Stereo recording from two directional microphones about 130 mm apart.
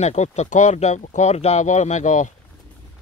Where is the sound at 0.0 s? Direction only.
60° left (ahead or behind).